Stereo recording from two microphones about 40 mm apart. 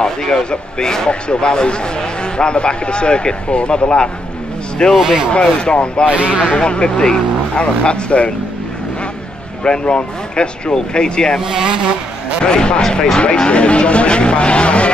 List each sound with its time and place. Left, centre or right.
0.0 s a man's voice: centre
4.9 s speech: centre
5.4 s a man's voice: left
9.6 s a man's voice: left
11.4 s speech: centre
12.4 s a man's voice: left
13.2 s a man's voice: left